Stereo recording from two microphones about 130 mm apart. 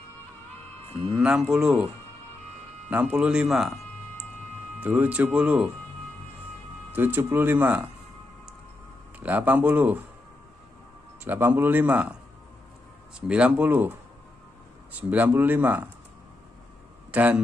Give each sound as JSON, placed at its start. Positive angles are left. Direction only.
{"t": 1.1, "sound": "speech", "side_deg": -5}
{"t": 2.9, "sound": "speech", "side_deg": -15}
{"t": 4.8, "sound": "speech", "side_deg": -10}
{"t": 6.9, "sound": "speech", "side_deg": -15}
{"t": 9.2, "sound": "speech", "side_deg": -15}
{"t": 11.2, "sound": "speech", "side_deg": -15}
{"t": 13.3, "sound": "speech", "side_deg": -10}
{"t": 15.0, "sound": "speech", "side_deg": -10}
{"t": 17.1, "sound": "a man's voice", "side_deg": -10}